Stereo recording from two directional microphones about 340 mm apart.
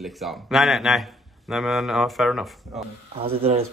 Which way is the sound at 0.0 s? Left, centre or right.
Centre.